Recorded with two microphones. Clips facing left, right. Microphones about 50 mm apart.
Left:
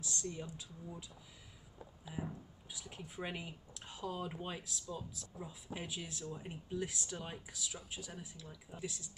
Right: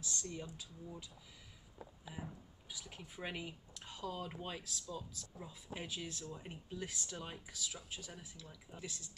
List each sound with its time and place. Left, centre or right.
0.0 s speech: centre
2.1 s speech: centre
6.3 s speech: centre